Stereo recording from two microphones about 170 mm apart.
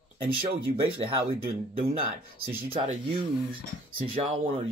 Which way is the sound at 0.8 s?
35° right (ahead or behind).